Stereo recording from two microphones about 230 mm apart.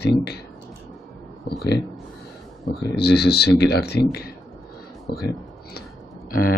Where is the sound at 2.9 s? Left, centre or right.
Left.